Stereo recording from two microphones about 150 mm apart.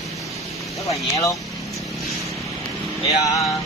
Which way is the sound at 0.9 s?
20° left (ahead or behind).